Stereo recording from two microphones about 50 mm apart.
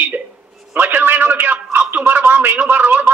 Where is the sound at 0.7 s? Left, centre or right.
Right.